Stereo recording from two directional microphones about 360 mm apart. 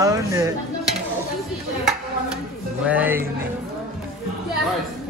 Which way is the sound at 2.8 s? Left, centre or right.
Centre.